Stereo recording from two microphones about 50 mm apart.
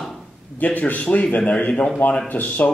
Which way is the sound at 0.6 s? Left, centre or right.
Left.